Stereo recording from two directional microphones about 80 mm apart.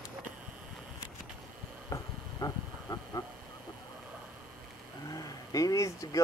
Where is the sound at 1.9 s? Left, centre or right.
Left.